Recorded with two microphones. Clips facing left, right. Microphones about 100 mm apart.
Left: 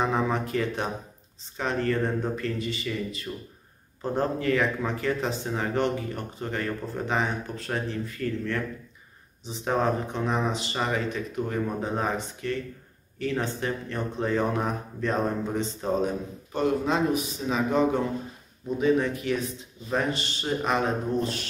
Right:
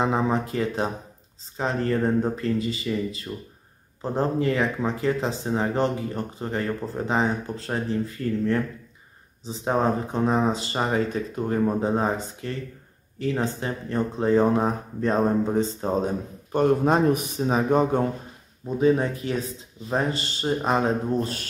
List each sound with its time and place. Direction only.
0.0 s speech: 25° right (ahead or behind)
16.5 s speech: 50° right (ahead or behind)
18.8 s speech: 35° right (ahead or behind)